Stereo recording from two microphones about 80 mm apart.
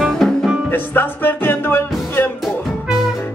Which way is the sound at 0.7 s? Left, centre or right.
Left.